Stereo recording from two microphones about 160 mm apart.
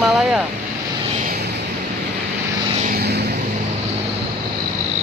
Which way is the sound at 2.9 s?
80° right.